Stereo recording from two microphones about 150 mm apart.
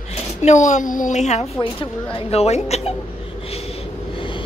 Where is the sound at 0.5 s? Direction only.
55° left (ahead or behind).